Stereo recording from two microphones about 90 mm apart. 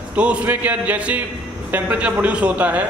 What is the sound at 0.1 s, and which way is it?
A man's voice, 15° right (ahead or behind).